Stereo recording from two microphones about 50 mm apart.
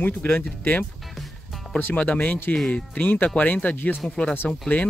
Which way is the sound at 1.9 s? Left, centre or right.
Left.